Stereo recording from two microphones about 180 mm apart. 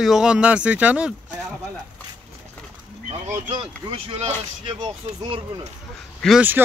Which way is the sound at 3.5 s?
25° right (ahead or behind).